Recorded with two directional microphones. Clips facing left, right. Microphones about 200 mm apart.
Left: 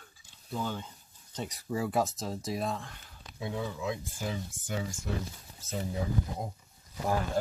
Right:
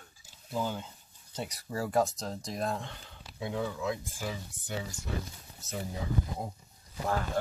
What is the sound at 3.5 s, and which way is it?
Speech, 15° left (ahead or behind).